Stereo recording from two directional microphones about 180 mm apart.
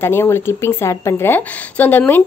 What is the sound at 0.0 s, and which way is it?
Speech, 15° left (ahead or behind).